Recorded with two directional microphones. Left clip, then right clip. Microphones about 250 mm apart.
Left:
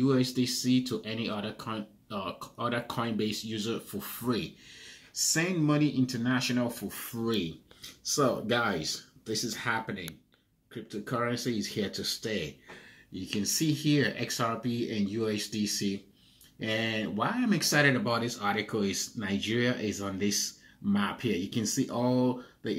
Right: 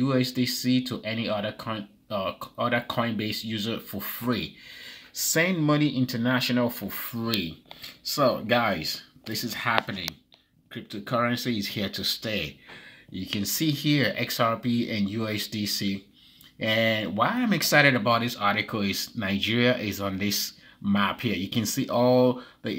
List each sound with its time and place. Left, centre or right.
0.0 s speech: right
8.2 s speech: right